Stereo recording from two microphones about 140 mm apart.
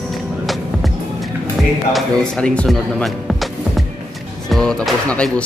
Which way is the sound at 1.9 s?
5° left (ahead or behind).